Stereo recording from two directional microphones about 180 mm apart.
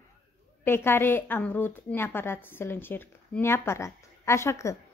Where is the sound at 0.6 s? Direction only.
10° left (ahead or behind).